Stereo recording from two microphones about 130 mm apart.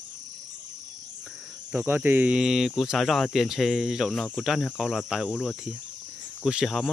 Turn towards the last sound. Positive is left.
turn(degrees=-5)  # may be behind; listen again after turning